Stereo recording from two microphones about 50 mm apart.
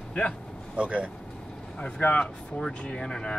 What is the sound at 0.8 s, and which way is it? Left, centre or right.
Speech, right.